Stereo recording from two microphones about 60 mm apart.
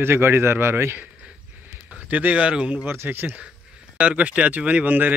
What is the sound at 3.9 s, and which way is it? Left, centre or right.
Speech, right.